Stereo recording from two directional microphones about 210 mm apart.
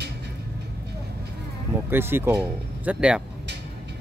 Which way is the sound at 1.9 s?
10° right (ahead or behind).